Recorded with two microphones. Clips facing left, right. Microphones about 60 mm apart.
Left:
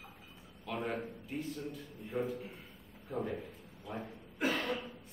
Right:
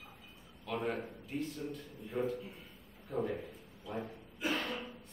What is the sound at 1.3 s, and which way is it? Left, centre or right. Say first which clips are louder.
A man's voice: right 2 dB; centre.